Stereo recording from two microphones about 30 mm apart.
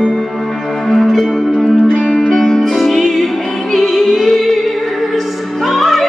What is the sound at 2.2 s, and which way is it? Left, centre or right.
Music, centre.